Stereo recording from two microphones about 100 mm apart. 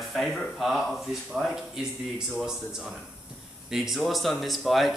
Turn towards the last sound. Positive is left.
turn(degrees=0)  # may be behind; listen again after turning